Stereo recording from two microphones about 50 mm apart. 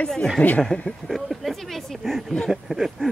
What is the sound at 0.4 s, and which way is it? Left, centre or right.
Speech, centre.